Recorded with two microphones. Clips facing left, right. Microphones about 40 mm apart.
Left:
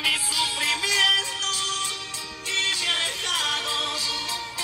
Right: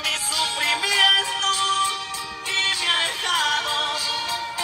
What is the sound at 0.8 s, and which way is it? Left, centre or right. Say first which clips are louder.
Music: right 3 dB; right.